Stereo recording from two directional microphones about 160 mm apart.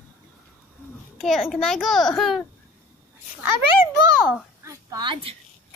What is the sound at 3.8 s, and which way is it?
A child's voice, 15° right (ahead or behind).